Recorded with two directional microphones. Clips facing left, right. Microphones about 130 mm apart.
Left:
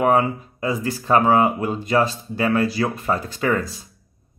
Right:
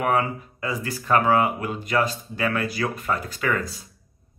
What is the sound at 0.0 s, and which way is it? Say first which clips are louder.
Speech: left 5 dB; 25° left (ahead or behind).